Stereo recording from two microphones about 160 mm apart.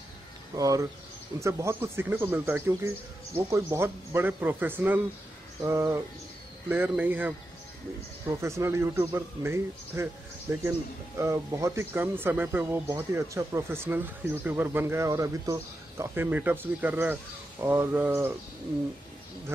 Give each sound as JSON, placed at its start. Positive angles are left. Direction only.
{"t": 0.6, "sound": "speech", "side_deg": -20}